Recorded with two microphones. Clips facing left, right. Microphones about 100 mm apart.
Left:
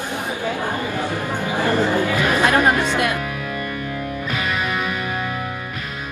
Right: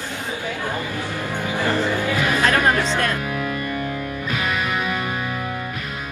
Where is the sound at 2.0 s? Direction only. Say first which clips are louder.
Left 2 dB; 15° left (ahead or behind).